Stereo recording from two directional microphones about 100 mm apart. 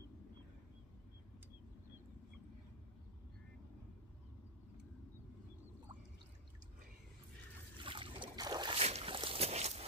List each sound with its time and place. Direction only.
7.8 s boat: 55° right (ahead or behind)
8.4 s boat: 45° right (ahead or behind)
8.7 s a sound: 85° right